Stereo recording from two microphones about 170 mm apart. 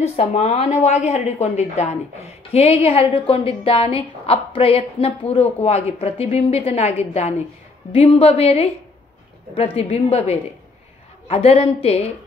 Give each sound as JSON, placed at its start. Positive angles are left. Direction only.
{"t": 0.0, "sound": "a woman's voice", "side_deg": 40}